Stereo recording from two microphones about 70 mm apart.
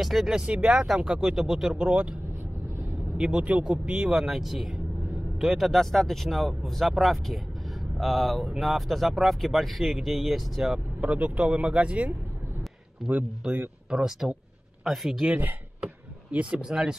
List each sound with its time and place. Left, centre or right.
0.0 s speech: centre
3.3 s speech: centre
11.0 s speech: centre
13.4 s speech: centre
16.3 s speech: centre